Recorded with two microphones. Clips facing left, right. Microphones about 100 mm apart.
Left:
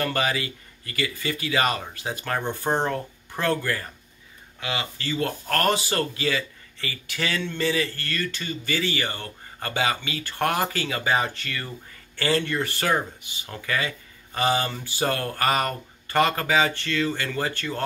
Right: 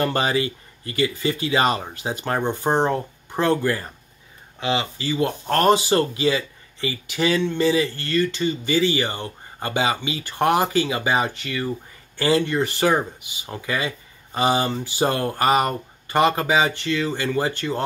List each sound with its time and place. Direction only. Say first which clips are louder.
0.0 s speech: right 4 dB; 25° right (ahead or behind)